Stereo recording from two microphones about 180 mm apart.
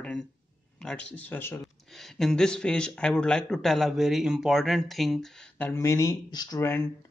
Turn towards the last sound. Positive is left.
turn(degrees=15)  # may be behind; listen again after turning